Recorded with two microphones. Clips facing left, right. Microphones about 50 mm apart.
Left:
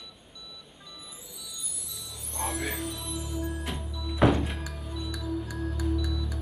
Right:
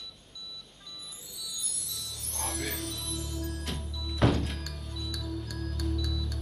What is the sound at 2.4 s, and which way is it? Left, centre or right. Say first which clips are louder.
Music: left 3 dB; centre.